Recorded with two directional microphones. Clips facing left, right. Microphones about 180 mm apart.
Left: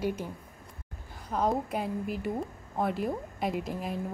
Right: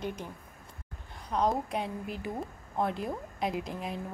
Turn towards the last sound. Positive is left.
turn(degrees=0)  # may be behind; listen again after turning